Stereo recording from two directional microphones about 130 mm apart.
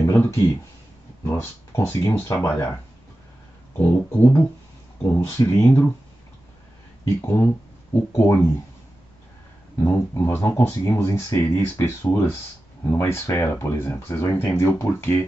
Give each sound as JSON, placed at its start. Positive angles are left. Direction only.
{"t": 0.0, "sound": "a sound", "side_deg": 20}
{"t": 1.2, "sound": "speech", "side_deg": 20}
{"t": 3.7, "sound": "speech", "side_deg": 15}
{"t": 7.2, "sound": "speech", "side_deg": 20}
{"t": 9.8, "sound": "speech", "side_deg": 20}